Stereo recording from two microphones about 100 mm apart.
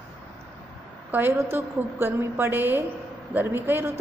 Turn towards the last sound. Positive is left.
turn(degrees=-20)  # may be behind; listen again after turning